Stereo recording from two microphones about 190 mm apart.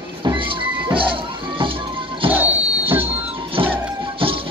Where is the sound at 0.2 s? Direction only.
25° right (ahead or behind).